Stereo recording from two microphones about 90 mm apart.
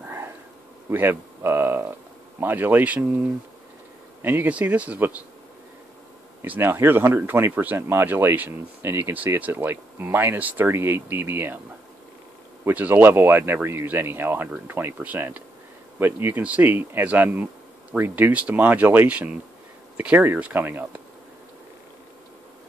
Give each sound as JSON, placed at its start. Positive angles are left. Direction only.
{"t": 0.8, "sound": "speech", "side_deg": -25}
{"t": 6.4, "sound": "speech", "side_deg": -20}
{"t": 12.6, "sound": "speech", "side_deg": -20}